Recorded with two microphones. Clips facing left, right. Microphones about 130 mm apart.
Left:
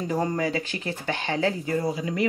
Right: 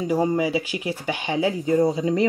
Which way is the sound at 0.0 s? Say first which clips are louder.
Right 4 dB; 10° right (ahead or behind).